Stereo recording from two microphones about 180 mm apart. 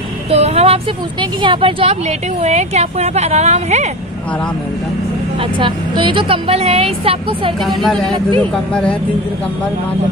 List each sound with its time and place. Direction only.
0.3 s a sound: 35° right (ahead or behind)
1.4 s a woman's voice: 30° right (ahead or behind)
5.6 s a woman's voice: 25° right (ahead or behind)
7.6 s speech: centre (ahead or behind)